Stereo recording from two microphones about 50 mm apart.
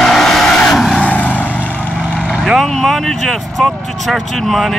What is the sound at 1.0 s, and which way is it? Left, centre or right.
Vehicle, left.